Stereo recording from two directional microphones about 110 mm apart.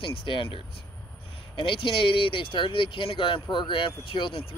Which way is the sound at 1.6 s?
55° left (ahead or behind).